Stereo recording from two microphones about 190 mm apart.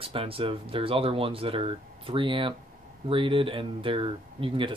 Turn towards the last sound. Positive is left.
turn(degrees=-25)  # may be behind; listen again after turning